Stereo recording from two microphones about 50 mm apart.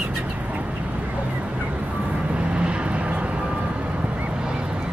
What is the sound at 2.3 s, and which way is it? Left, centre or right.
Vehicle, right.